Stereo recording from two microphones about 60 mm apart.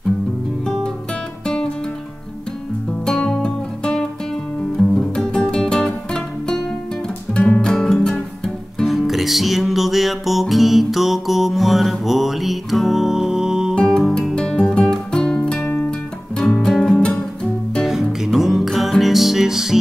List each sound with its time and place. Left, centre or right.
3.1 s music: centre
8.7 s music: centre
13.7 s music: centre
14.0 s music: centre
14.3 s music: centre
18.2 s music: centre